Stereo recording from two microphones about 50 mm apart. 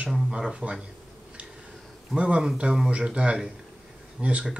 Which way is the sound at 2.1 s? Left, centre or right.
Right.